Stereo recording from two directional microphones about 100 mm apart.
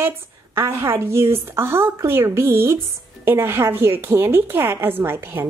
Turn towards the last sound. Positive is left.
turn(degrees=-20)  # may be behind; listen again after turning